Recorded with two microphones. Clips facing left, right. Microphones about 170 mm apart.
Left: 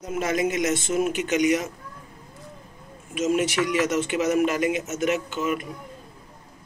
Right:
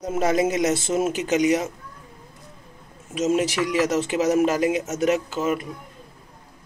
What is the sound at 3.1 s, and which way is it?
A man's voice, 35° right (ahead or behind).